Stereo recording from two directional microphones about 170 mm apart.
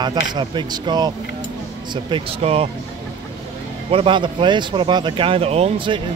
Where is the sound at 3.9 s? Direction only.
30° right (ahead or behind).